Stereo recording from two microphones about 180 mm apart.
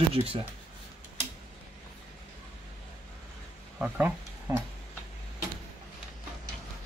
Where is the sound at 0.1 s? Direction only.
30° right (ahead or behind).